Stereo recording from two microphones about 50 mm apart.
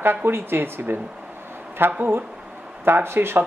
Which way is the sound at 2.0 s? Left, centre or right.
Right.